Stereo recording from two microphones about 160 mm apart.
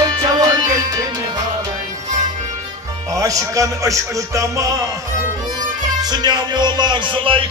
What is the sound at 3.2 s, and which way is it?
Music, 20° right (ahead or behind).